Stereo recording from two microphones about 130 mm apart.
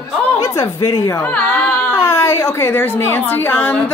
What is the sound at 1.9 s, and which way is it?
A woman's voice, 20° left (ahead or behind).